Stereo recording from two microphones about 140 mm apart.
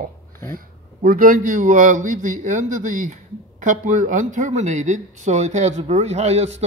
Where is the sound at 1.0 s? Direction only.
70° right (ahead or behind).